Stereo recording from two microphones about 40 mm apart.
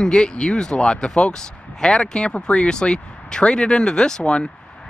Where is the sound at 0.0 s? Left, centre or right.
Centre.